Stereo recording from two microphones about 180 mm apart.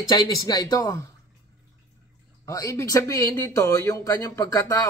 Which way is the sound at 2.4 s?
20° left (ahead or behind).